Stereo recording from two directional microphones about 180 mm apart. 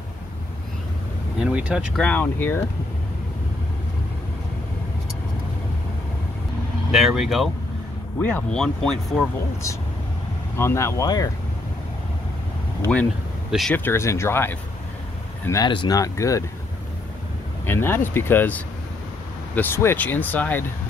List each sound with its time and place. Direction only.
1.4 s speech: 5° right (ahead or behind)
2.0 s speech: 10° left (ahead or behind)
6.9 s speech: centre (ahead or behind)
10.5 s speech: 15° left (ahead or behind)
13.5 s speech: centre (ahead or behind)
13.7 s speech: 15° left (ahead or behind)
17.6 s speech: 10° left (ahead or behind)